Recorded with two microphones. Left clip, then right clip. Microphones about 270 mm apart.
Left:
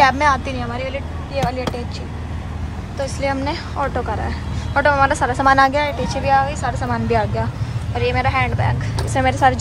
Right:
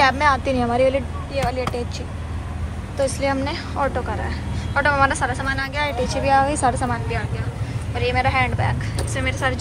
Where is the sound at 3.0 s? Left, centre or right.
Centre.